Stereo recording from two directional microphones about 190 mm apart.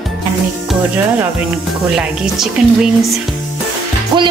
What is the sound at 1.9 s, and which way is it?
A woman's voice, 5° right (ahead or behind).